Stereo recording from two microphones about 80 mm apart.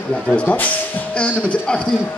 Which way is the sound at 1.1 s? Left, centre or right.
Centre.